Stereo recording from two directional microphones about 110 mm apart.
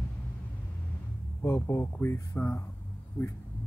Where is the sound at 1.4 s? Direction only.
25° left (ahead or behind).